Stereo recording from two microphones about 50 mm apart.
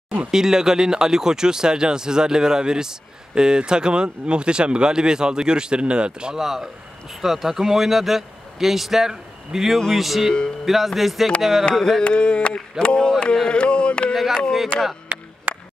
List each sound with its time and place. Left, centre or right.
0.3 s speech: centre
6.4 s speech: centre
12.0 s mantra: centre
14.1 s speech: centre
14.7 s speech: right
15.1 s a sound: right